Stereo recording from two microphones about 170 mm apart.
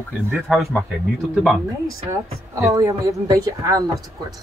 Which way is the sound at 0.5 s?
Centre (ahead or behind).